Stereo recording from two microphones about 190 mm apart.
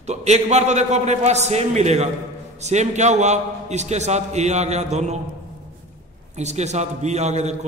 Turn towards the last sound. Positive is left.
turn(degrees=-35)  # may be behind; listen again after turning